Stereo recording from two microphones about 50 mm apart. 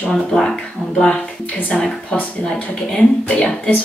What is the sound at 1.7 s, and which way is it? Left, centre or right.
Speech, centre.